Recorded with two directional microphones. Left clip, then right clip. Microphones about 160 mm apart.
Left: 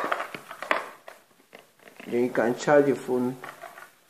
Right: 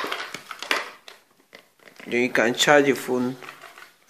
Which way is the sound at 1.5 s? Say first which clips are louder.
Right 2 dB; 65° right (ahead or behind).